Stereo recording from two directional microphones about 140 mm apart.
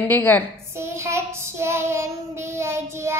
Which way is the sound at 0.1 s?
15° left (ahead or behind).